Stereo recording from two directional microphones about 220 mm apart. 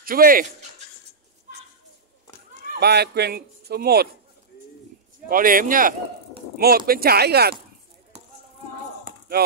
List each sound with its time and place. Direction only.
0.0 s speech: 40° right (ahead or behind)
2.8 s speech: 45° right (ahead or behind)
5.3 s speech: 40° right (ahead or behind)